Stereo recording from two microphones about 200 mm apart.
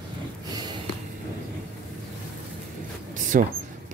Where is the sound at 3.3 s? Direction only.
45° right (ahead or behind).